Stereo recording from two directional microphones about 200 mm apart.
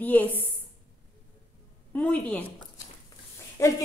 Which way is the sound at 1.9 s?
5° left (ahead or behind).